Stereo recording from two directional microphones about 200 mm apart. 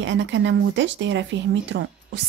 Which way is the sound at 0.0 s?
65° right (ahead or behind).